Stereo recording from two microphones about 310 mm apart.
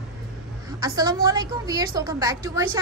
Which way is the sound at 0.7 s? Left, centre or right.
Centre.